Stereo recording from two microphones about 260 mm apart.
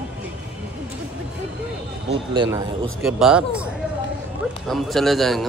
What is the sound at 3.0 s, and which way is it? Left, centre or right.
Speech, centre.